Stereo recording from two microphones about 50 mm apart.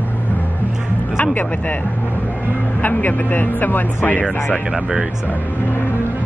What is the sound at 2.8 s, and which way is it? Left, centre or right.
Speech, left.